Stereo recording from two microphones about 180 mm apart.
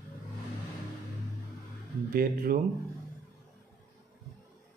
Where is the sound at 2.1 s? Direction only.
55° right (ahead or behind).